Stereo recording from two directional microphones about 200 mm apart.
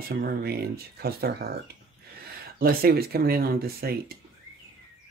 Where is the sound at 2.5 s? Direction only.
50° right (ahead or behind).